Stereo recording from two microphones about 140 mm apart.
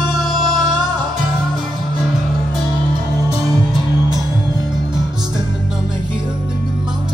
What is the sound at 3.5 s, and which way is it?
Music, 30° right (ahead or behind).